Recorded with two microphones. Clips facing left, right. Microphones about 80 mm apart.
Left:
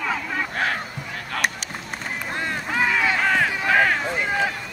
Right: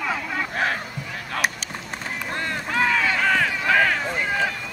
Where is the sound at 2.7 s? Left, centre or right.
Centre.